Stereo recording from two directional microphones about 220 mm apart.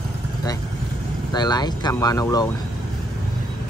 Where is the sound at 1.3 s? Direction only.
20° left (ahead or behind).